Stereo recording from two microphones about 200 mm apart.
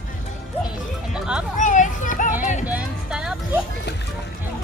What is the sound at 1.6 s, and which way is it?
Children playing, 40° left (ahead or behind).